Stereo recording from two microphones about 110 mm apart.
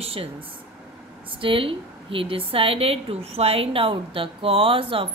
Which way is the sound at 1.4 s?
55° right (ahead or behind).